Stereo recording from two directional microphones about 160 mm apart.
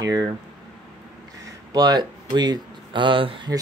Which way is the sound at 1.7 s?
25° right (ahead or behind).